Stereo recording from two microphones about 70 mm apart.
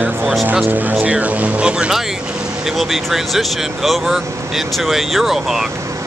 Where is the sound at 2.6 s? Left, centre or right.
Centre.